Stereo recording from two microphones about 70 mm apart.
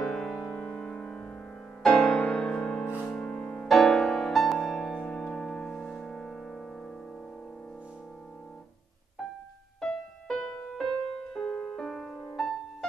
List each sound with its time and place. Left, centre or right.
0.1 s music: centre
3.6 s music: centre
9.8 s music: centre